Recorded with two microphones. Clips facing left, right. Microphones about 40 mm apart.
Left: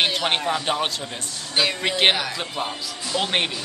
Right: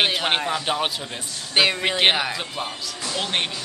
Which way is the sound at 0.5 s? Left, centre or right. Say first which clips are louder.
Left 1 dB; centre.